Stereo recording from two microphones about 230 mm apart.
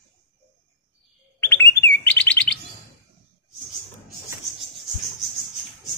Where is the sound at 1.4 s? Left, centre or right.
Centre.